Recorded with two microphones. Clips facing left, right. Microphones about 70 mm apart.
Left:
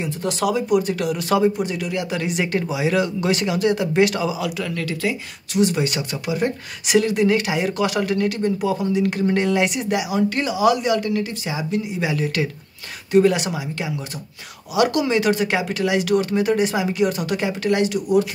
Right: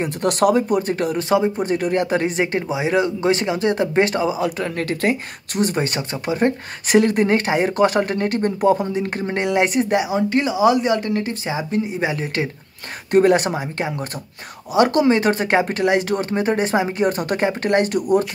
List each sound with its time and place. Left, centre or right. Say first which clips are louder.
0.0 s speech: right 5 dB; right
8.8 s speech: left 3 dB; right
13.1 s speech: right 2 dB; right